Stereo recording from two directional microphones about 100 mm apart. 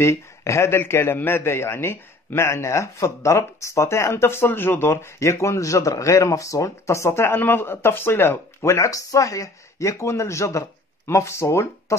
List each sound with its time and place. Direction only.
0.0 s a man's voice: 30° left (ahead or behind)